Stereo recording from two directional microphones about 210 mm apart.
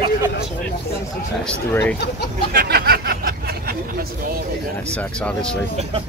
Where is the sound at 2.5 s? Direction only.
50° right (ahead or behind).